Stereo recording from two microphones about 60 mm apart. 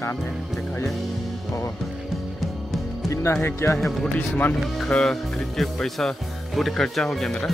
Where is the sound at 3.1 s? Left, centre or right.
Left.